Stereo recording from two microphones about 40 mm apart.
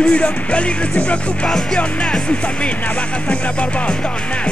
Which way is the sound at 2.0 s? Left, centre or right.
Left.